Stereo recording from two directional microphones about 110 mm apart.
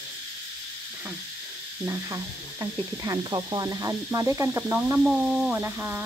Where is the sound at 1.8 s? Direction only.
30° right (ahead or behind).